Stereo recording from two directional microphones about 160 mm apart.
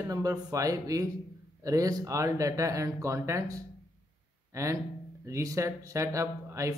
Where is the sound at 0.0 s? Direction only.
20° right (ahead or behind).